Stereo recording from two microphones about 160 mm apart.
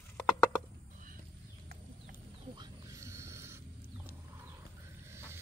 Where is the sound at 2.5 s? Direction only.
25° right (ahead or behind).